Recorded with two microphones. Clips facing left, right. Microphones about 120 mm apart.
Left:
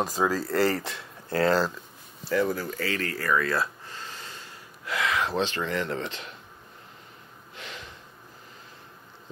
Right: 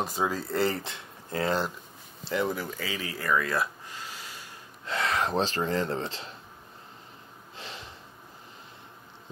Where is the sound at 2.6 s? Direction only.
10° right (ahead or behind).